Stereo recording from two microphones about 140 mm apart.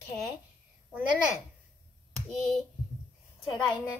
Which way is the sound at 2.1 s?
5° left (ahead or behind).